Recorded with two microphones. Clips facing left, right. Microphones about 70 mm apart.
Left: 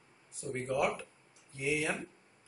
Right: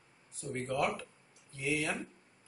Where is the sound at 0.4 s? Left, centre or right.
Centre.